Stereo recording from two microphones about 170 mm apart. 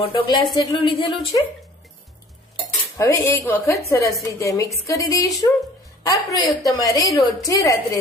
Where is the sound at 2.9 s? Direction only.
15° left (ahead or behind).